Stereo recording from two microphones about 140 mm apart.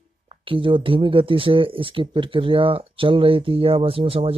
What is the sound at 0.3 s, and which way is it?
Speech, 40° right (ahead or behind).